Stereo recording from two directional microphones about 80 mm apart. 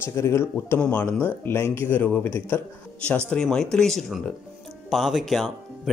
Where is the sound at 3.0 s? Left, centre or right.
Centre.